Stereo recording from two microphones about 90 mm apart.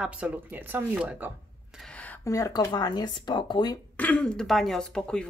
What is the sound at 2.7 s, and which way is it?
Speech, 55° left (ahead or behind).